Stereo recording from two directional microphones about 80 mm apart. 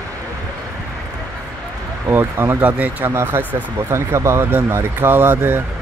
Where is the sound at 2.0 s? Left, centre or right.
Right.